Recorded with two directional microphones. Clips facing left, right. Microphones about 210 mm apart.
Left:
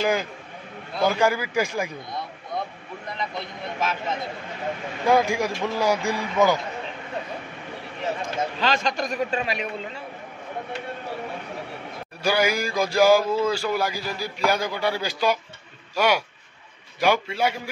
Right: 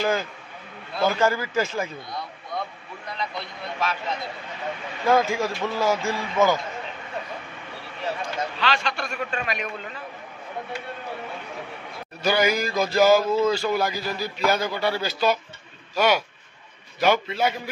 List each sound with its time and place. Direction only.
0.0 s a man's voice: 15° left (ahead or behind)
5.0 s a man's voice: 15° left (ahead or behind)
8.0 s speech: 20° left (ahead or behind)
8.5 s a man's voice: 40° left (ahead or behind)
12.2 s a man's voice: 10° left (ahead or behind)